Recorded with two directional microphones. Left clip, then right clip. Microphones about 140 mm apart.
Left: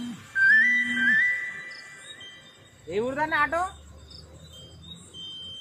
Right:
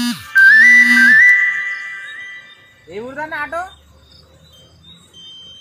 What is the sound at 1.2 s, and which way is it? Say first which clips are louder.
Music: right 16 dB; 85° right.